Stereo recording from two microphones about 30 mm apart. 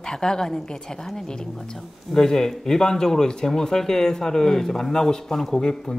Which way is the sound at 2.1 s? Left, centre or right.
Centre.